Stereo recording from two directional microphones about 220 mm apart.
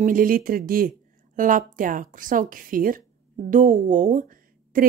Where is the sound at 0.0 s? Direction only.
40° right (ahead or behind).